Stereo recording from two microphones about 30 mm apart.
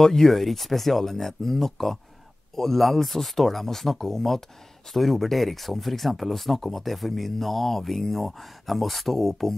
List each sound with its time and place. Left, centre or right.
0.0 s speech: centre
0.3 s speech: centre